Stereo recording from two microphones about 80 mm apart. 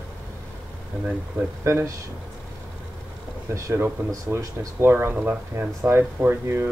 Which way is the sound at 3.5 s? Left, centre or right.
Right.